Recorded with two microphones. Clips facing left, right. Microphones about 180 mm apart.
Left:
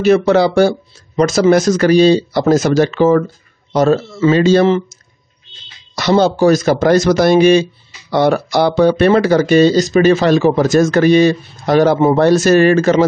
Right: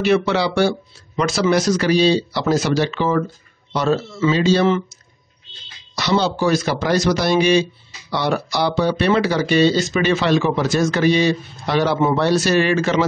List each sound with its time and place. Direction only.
0.0 s speech: 45° left (ahead or behind)
5.9 s speech: 50° left (ahead or behind)